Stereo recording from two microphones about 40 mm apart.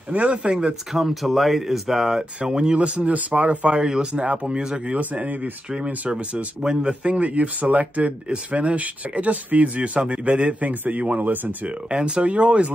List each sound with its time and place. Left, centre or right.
0.1 s speech: right
0.9 s speech: centre
2.5 s speech: right
3.1 s speech: right
3.8 s speech: centre
4.1 s speech: right
4.9 s speech: right
6.6 s speech: centre
6.9 s speech: right
9.9 s speech: right
10.6 s speech: right
11.9 s speech: right